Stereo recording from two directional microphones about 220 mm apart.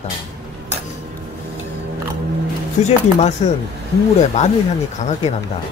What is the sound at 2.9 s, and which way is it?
Speech, 30° left (ahead or behind).